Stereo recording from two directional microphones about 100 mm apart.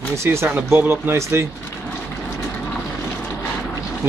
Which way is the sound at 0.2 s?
25° right (ahead or behind).